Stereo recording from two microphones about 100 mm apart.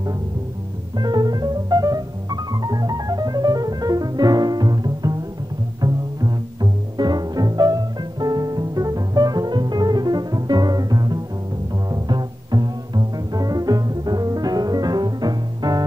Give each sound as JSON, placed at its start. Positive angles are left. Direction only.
{"t": 0.9, "sound": "music", "side_deg": -45}
{"t": 5.8, "sound": "bowed string instrument", "side_deg": -40}